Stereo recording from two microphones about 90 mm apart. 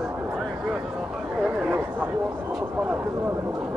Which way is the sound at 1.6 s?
15° right (ahead or behind).